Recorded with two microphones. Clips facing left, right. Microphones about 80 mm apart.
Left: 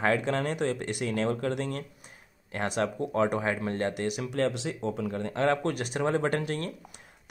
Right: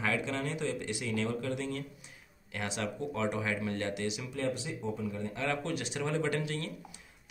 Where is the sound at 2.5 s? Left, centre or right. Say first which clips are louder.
Left 7 dB; left.